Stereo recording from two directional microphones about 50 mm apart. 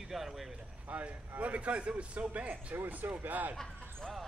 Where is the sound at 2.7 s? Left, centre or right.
Right.